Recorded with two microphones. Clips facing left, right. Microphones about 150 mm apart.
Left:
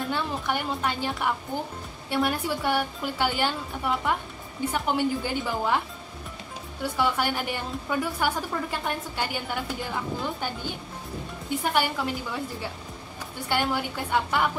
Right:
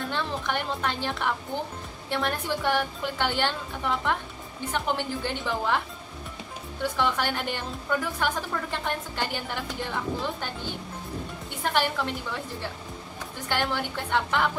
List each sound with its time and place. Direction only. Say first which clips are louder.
0.1 s a woman's voice: even; 10° left (ahead or behind)
6.8 s a woman's voice: left 1 dB; 5° left (ahead or behind)
11.6 s a woman's voice: right 1 dB; 5° left (ahead or behind)
13.5 s a woman's voice: left 2 dB; 5° left (ahead or behind)